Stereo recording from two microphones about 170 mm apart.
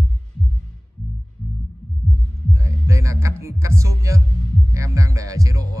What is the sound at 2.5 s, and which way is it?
Music, 15° right (ahead or behind).